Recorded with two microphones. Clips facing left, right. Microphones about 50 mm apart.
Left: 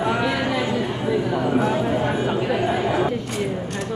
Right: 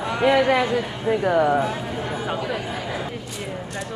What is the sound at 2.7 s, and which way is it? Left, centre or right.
Speech, left.